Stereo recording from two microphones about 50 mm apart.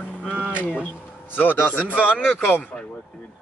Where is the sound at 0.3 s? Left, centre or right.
Right.